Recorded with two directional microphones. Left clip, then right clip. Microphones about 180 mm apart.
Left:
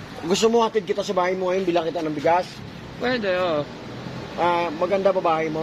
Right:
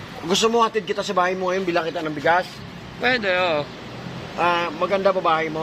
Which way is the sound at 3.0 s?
15° left (ahead or behind).